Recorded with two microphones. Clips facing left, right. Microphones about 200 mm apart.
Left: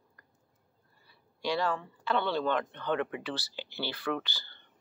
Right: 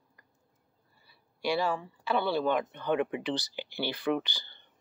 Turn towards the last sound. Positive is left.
turn(degrees=-15)  # may be behind; listen again after turning